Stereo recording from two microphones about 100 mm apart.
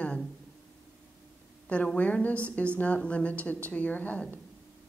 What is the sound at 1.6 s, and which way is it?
A woman's voice, 15° left (ahead or behind).